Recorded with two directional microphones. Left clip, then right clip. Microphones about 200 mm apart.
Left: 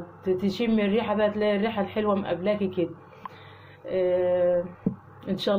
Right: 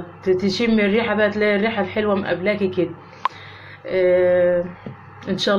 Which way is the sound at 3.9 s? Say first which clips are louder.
Right 8 dB; 5° left (ahead or behind).